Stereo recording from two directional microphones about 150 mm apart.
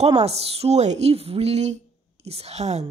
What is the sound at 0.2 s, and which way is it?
Speech, 45° right (ahead or behind).